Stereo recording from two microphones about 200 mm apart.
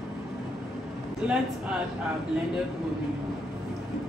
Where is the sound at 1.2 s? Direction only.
5° right (ahead or behind).